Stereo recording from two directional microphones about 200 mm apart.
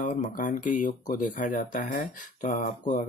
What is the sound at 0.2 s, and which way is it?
Speech, 40° left (ahead or behind).